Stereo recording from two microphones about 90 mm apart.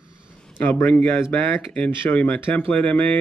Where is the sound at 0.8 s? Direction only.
20° left (ahead or behind).